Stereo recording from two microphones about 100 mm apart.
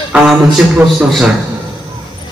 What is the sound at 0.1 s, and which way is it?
A man's voice, 10° right (ahead or behind).